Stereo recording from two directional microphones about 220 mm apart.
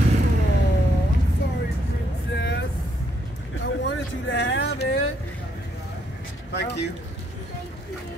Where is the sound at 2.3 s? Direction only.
50° left (ahead or behind).